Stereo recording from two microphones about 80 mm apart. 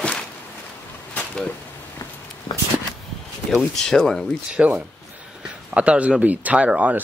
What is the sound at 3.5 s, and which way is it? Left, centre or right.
Speech, centre.